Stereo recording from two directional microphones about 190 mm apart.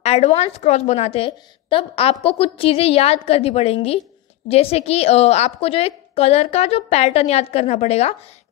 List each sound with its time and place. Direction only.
0.0 s a woman's voice: 35° left (ahead or behind)